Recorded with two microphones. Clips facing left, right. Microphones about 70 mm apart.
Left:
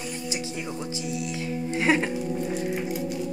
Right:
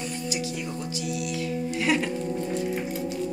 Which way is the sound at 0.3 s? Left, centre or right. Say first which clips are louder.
Even; left.